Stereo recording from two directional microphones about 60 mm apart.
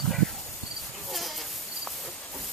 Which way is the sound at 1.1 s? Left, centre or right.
Centre.